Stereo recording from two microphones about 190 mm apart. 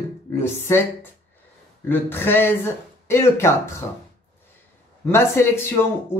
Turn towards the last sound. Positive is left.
turn(degrees=15)  # may be behind; listen again after turning